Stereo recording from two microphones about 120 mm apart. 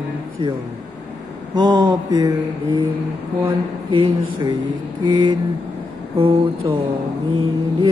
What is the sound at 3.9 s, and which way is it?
Speech, 45° right (ahead or behind).